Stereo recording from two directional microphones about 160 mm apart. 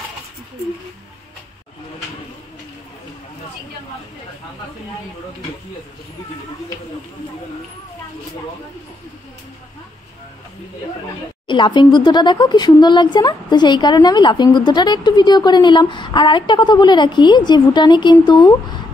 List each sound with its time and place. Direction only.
11.4 s speech: 30° left (ahead or behind)